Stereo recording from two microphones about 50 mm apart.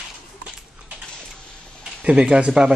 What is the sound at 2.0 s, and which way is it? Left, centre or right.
Speech, right.